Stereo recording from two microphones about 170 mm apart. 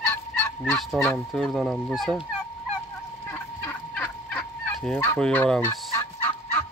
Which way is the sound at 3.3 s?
10° left (ahead or behind).